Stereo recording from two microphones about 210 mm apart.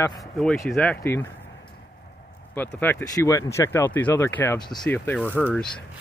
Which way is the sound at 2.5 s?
10° left (ahead or behind).